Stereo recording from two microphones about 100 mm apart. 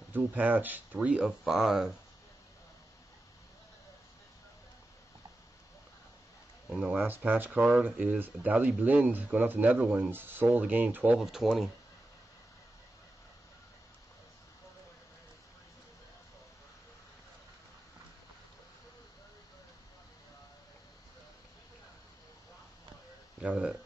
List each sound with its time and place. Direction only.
0.1 s speech: 15° right (ahead or behind)
6.7 s speech: 5° right (ahead or behind)
11.1 s speech: 5° right (ahead or behind)
23.4 s a sound: 10° right (ahead or behind)